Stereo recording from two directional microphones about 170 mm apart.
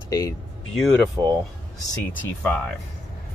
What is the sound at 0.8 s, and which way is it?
Speech, centre (ahead or behind).